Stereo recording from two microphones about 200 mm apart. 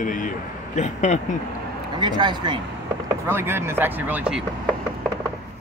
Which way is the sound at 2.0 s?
20° right (ahead or behind).